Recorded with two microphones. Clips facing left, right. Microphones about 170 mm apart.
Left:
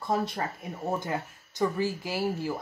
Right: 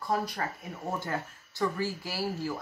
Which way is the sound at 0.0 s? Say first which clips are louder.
Left 2 dB; 25° left (ahead or behind).